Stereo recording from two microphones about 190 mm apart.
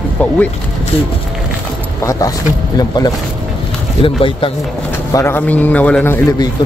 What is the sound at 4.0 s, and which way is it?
Speech, 25° left (ahead or behind).